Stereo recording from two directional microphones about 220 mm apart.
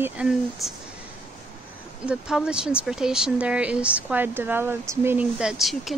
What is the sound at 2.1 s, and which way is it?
Speech, 5° right (ahead or behind).